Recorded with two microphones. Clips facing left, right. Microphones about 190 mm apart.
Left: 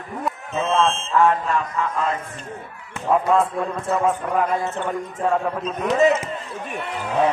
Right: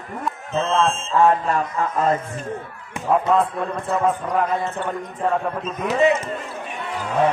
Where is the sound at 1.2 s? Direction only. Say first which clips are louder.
Right 2 dB; 40° right (ahead or behind).